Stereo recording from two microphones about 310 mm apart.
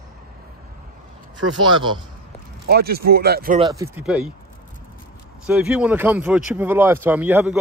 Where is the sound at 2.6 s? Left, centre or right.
Right.